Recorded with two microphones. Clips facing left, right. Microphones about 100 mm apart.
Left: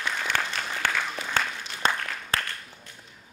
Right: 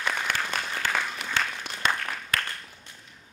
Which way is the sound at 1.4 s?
45° left (ahead or behind).